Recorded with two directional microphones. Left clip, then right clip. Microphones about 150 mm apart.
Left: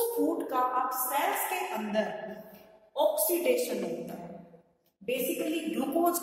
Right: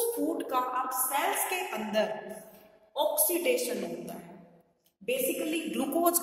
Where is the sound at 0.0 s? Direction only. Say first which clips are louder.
Left 2 dB; 20° right (ahead or behind).